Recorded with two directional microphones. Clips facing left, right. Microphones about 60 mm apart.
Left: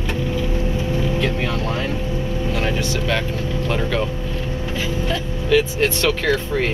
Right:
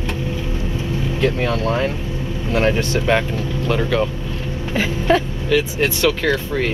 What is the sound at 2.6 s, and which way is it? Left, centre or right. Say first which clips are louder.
Speech: right 8 dB; right.